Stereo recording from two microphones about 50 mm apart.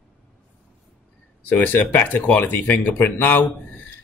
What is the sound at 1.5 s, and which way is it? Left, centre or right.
Speech, left.